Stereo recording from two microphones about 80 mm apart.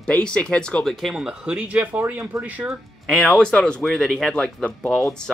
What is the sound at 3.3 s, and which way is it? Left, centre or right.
Speech, centre.